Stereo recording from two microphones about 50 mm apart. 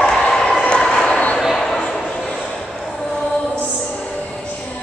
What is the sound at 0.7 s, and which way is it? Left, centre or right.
Train, centre.